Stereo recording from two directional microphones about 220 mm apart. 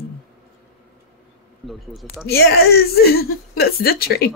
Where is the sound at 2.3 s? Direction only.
45° left (ahead or behind).